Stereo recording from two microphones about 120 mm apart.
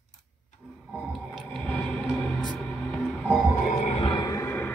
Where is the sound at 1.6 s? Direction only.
10° left (ahead or behind).